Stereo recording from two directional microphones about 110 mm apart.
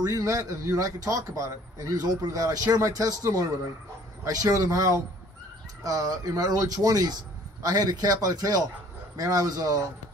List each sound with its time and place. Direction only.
0.0 s a man's voice: 30° right (ahead or behind)